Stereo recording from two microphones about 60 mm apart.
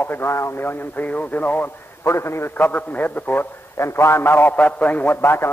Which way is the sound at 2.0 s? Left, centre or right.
Left.